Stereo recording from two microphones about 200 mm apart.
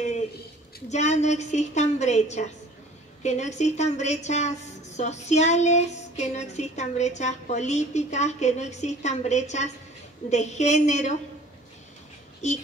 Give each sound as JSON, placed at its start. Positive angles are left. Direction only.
{"t": 0.8, "sound": "a woman's voice", "side_deg": 35}
{"t": 12.4, "sound": "a woman's voice", "side_deg": 35}